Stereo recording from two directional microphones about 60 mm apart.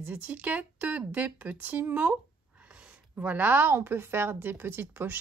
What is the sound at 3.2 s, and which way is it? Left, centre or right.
Female singing, right.